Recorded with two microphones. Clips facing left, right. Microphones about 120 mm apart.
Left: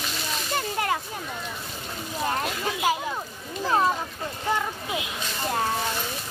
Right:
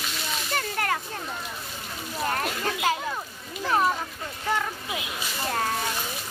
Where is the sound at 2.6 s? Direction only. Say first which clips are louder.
Left 1 dB; 10° left (ahead or behind).